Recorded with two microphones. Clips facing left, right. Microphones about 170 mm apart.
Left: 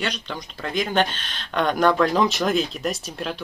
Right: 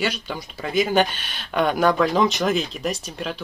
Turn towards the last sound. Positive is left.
turn(degrees=0)  # may be behind; listen again after turning